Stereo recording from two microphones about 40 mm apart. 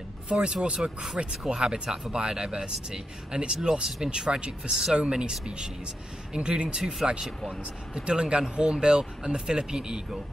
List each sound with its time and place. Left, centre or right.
0.3 s speech: right
1.2 s speech: right
1.6 s speech: centre
6.8 s speech: centre
7.9 s speech: right